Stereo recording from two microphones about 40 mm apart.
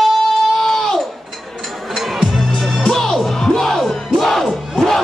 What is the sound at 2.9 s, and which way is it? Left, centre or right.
Music, centre.